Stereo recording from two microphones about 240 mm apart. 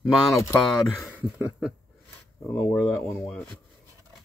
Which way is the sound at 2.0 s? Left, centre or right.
Centre.